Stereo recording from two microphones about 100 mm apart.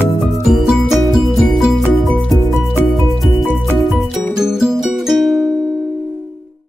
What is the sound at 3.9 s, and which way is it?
Music, 5° right (ahead or behind).